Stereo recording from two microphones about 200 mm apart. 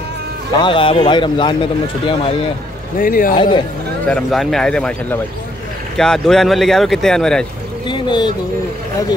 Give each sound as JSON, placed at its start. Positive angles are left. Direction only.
{"t": 0.6, "sound": "a man's voice", "side_deg": 25}
{"t": 3.0, "sound": "speech", "side_deg": 45}
{"t": 3.3, "sound": "a man's voice", "side_deg": 25}
{"t": 4.1, "sound": "speech", "side_deg": 0}
{"t": 5.9, "sound": "speech", "side_deg": 0}
{"t": 7.8, "sound": "a sound", "side_deg": 25}